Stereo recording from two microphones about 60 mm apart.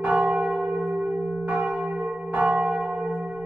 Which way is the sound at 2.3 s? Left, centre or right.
Centre.